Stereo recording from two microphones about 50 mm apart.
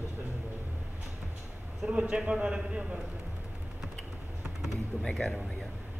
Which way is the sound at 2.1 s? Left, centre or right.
Centre.